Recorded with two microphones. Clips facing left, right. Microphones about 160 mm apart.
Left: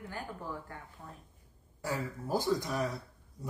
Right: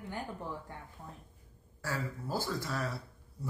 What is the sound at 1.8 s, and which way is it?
Speech, 20° left (ahead or behind).